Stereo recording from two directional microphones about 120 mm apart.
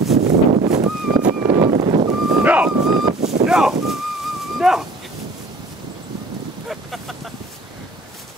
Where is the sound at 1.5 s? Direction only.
55° right (ahead or behind).